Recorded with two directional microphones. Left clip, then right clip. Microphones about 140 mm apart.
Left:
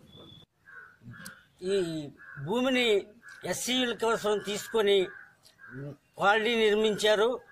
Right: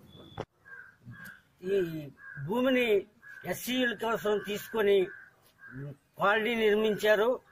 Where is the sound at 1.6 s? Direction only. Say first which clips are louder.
Left 1 dB; 30° left (ahead or behind).